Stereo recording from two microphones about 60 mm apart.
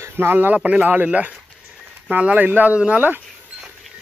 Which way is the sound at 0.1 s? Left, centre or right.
Right.